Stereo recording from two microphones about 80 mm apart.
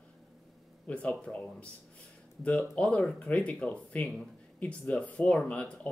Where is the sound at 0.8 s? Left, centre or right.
Centre.